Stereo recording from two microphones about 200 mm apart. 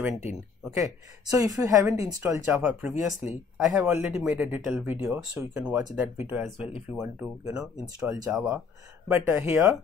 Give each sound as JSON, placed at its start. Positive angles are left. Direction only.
{"t": 0.7, "sound": "speech", "side_deg": -15}
{"t": 8.3, "sound": "speech", "side_deg": -5}